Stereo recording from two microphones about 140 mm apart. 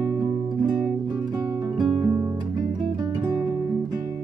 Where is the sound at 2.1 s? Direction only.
20° right (ahead or behind).